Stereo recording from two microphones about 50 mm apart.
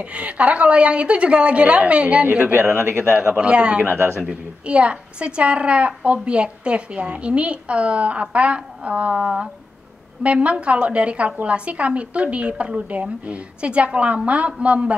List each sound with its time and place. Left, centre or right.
0.0 s a woman's voice: right
2.5 s speech: right
3.3 s a woman's voice: right
3.8 s speech: right
4.2 s a woman's voice: right